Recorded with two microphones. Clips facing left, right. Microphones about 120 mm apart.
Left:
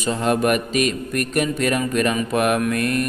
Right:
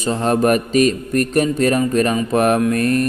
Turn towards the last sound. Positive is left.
turn(degrees=-35)  # may be behind; listen again after turning